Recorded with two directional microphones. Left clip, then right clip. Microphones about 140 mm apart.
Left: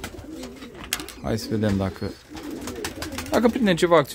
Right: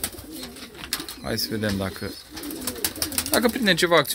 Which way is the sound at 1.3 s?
20° left (ahead or behind).